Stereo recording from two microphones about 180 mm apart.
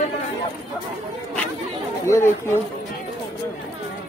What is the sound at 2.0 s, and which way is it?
Speech, 15° left (ahead or behind).